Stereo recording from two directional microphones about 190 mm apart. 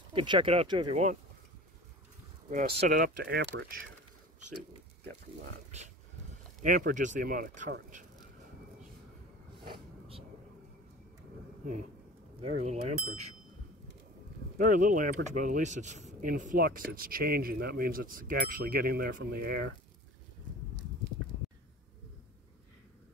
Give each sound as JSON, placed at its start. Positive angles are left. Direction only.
{"t": 0.1, "sound": "speech", "side_deg": -25}
{"t": 2.6, "sound": "speech", "side_deg": -55}
{"t": 6.6, "sound": "speech", "side_deg": -45}
{"t": 12.4, "sound": "speech", "side_deg": -35}
{"t": 14.6, "sound": "speech", "side_deg": -45}